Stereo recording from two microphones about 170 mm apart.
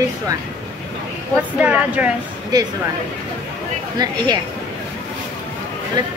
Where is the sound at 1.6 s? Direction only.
10° right (ahead or behind).